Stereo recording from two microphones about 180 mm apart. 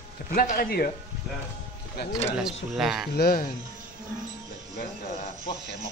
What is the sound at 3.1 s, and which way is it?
Speech, 55° left (ahead or behind).